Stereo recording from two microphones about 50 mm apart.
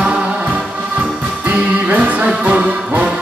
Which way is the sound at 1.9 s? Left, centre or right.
Right.